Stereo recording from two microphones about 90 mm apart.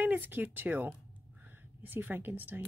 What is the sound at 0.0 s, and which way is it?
Speech, 20° right (ahead or behind).